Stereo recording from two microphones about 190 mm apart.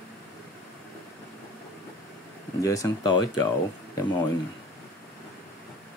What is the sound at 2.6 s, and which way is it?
Speech, 15° left (ahead or behind).